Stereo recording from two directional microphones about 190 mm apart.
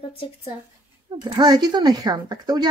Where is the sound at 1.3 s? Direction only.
20° right (ahead or behind).